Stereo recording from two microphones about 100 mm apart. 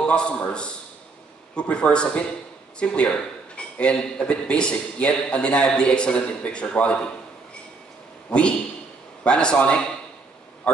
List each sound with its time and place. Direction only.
0.0 s speech: 10° left (ahead or behind)
8.3 s speech: 10° left (ahead or behind)